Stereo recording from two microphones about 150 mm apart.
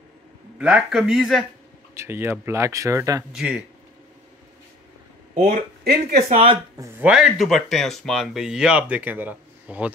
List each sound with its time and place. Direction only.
0.6 s speech: 5° right (ahead or behind)
2.0 s speech: 15° right (ahead or behind)
3.3 s speech: 5° right (ahead or behind)
5.4 s speech: 70° right (ahead or behind)
6.2 s speech: 40° right (ahead or behind)
7.0 s speech: 5° right (ahead or behind)